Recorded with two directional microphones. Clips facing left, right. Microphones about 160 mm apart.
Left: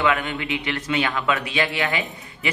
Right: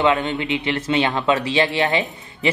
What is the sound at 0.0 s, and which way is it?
Speech, 25° right (ahead or behind).